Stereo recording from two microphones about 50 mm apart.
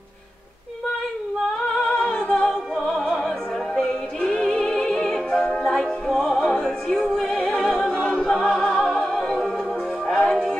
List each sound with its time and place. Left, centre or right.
1.8 s music: centre
2.9 s opera: centre
4.2 s music: centre
5.6 s opera: centre
7.1 s music: centre
7.8 s a capella: left
8.3 s music: centre